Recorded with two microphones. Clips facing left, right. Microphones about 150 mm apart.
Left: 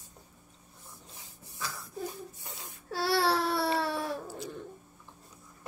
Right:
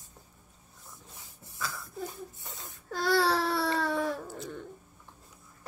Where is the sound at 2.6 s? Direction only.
10° left (ahead or behind).